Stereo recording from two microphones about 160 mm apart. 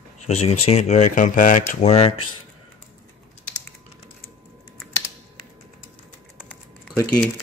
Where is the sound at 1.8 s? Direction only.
40° left (ahead or behind).